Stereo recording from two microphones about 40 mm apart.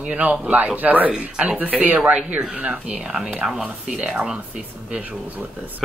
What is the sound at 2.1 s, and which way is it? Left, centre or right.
Speech, right.